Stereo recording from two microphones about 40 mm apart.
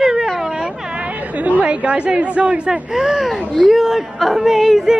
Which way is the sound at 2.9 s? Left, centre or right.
Centre.